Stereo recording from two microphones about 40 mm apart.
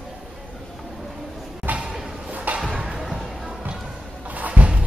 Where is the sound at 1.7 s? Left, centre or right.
Right.